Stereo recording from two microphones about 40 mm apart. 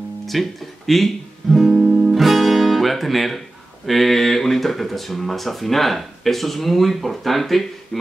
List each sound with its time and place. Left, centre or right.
0.3 s speech: centre
1.7 s guitar: right
2.1 s guitar: centre
3.8 s speech: centre